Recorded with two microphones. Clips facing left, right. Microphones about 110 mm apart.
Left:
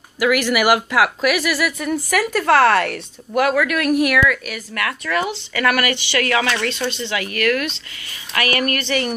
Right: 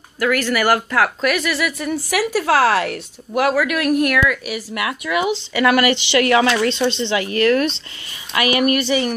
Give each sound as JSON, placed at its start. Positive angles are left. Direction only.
{"t": 0.2, "sound": "speech", "side_deg": 10}
{"t": 8.4, "sound": "a woman's voice", "side_deg": -15}